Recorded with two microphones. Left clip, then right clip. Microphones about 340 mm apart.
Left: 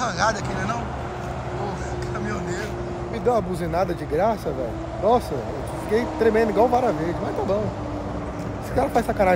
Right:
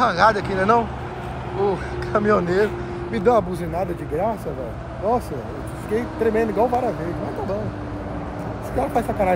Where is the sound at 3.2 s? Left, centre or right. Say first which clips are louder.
Right 4 dB; right.